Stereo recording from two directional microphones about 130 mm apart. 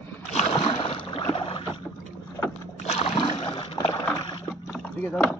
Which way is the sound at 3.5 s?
35° left (ahead or behind).